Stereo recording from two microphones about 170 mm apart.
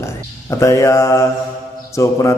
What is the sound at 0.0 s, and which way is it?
A man's voice, 15° left (ahead or behind).